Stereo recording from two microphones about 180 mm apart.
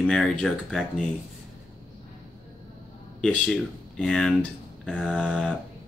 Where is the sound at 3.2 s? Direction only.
5° left (ahead or behind).